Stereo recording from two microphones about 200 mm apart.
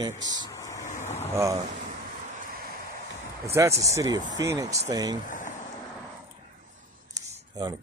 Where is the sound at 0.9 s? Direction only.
35° left (ahead or behind).